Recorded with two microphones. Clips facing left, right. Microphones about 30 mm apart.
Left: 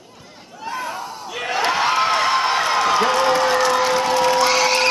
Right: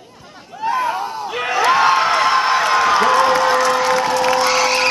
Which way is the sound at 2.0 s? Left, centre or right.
Centre.